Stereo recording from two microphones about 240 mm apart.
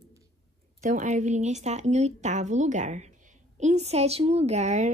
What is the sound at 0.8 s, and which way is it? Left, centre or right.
A woman's voice, right.